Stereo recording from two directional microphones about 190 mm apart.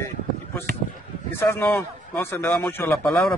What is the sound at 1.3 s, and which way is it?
A man's voice, 10° left (ahead or behind).